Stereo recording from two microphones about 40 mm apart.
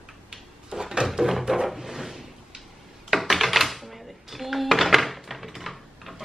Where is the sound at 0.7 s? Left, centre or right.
Centre.